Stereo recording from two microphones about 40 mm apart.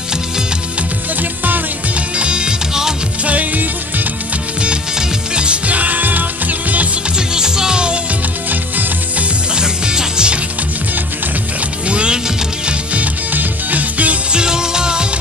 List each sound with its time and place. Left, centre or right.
2.1 s music: right
3.3 s music: right
4.9 s music: right
7.2 s music: centre
9.6 s music: centre
11.9 s music: right
13.3 s music: right
14.3 s music: centre